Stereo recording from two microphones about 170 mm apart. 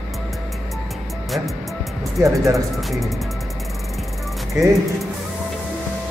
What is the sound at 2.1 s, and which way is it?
Speech, 20° right (ahead or behind).